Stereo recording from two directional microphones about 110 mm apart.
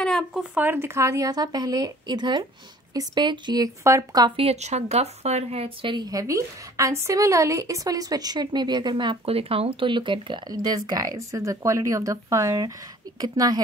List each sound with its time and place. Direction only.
0.0 s a sound: 5° left (ahead or behind)
0.4 s a woman's voice: 15° right (ahead or behind); by 4.3 s 30° right (ahead or behind)
4.4 s speech: 75° right (ahead or behind)
5.9 s a woman's voice: 40° right (ahead or behind)
9.2 s speech: 60° right (ahead or behind)
10.5 s a woman's voice: 35° right (ahead or behind)